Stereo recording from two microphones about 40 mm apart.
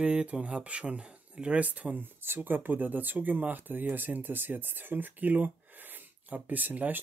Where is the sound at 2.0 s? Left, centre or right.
Right.